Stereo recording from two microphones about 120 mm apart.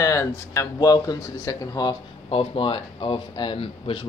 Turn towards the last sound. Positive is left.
turn(degrees=50)  # may be behind; listen again after turning